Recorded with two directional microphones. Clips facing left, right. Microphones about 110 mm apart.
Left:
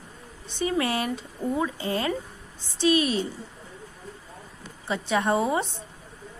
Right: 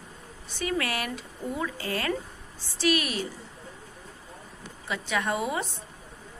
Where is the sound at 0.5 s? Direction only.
25° left (ahead or behind).